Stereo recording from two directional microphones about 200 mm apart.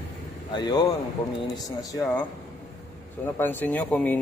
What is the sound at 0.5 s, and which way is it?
Speech, 20° left (ahead or behind).